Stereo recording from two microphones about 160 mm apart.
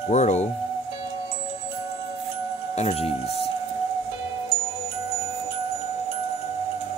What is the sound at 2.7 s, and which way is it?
Speech, 40° left (ahead or behind).